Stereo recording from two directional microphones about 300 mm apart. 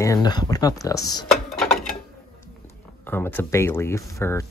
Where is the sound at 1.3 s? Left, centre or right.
Centre.